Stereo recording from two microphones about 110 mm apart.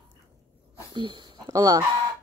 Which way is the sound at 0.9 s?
45° right (ahead or behind).